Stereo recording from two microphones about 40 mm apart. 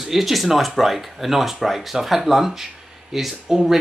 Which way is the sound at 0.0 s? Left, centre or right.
Centre.